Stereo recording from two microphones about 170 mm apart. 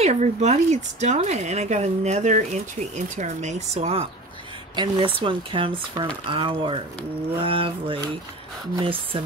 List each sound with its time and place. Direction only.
0.0 s speech: 40° right (ahead or behind)